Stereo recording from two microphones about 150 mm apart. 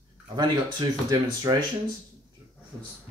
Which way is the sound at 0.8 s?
30° right (ahead or behind).